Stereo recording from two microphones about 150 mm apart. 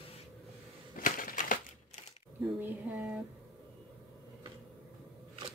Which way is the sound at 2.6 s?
10° right (ahead or behind).